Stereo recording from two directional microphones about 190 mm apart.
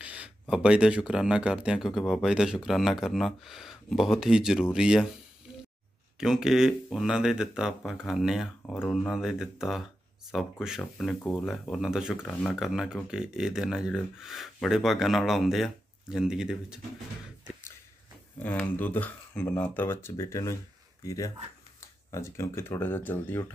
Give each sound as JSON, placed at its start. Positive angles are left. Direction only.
{"t": 0.0, "sound": "speech", "side_deg": -5}
{"t": 6.1, "sound": "speech", "side_deg": -5}
{"t": 18.4, "sound": "speech", "side_deg": 10}